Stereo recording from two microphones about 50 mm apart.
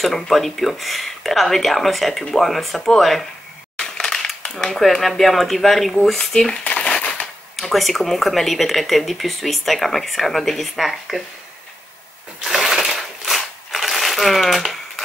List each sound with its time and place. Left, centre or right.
0.0 s speech: centre
3.8 s crushing: centre
4.6 s speech: centre
6.6 s crumpling: left
7.0 s typewriter: left
7.5 s speech: centre
12.4 s a sound: centre